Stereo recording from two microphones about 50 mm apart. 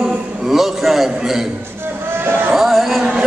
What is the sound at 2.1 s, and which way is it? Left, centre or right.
Speech, right.